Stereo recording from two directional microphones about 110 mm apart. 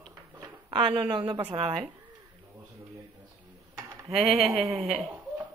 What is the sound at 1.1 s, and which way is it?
Speech, 45° right (ahead or behind).